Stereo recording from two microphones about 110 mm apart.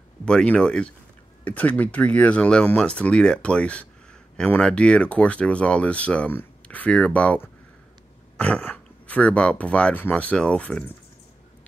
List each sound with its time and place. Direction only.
0.2 s speech: 10° left (ahead or behind)